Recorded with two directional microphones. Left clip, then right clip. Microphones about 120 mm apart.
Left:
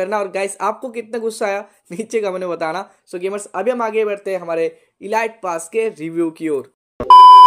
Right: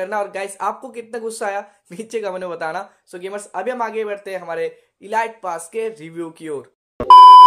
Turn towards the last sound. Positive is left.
turn(degrees=0)  # may be behind; listen again after turning